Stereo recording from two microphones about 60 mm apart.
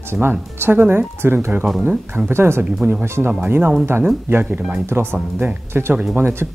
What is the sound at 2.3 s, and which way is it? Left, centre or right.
Speech, right.